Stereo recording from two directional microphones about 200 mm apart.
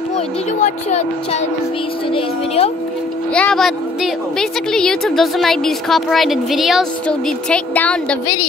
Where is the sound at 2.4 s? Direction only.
30° left (ahead or behind).